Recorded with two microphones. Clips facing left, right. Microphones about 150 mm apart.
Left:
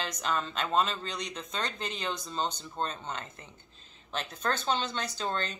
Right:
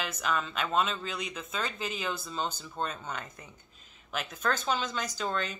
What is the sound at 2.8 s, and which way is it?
Speech, 30° left (ahead or behind).